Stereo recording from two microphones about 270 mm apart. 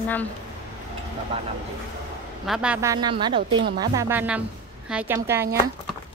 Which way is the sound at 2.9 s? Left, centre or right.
Centre.